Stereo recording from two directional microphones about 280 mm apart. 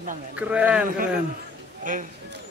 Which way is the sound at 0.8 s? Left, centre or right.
Right.